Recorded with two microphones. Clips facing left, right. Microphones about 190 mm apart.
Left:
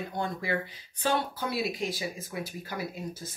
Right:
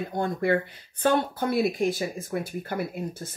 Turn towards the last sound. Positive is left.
turn(degrees=-60)  # may be behind; listen again after turning